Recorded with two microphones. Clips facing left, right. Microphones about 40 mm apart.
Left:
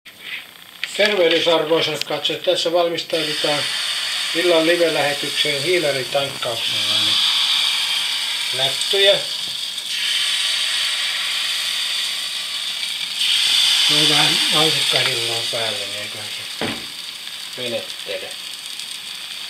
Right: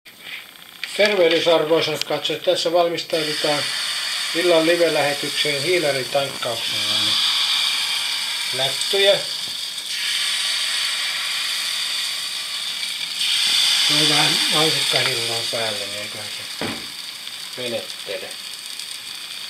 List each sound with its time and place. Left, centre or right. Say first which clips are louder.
0.9 s speech: even; centre
2.0 s speech: even; centre
2.4 s speech: left 1 dB; left
2.7 s speech: right 1 dB; centre
3.0 s speech: left 1 dB; left
9.8 s a sound: left 3 dB; left
16.5 s frying: left 2 dB; centre
17.6 s speech: left 1 dB; centre